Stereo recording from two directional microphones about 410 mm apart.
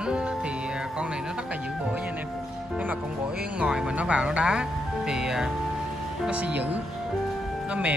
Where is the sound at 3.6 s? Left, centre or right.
Centre.